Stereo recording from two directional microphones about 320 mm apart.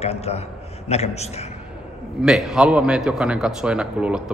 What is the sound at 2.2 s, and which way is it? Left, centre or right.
Speech, centre.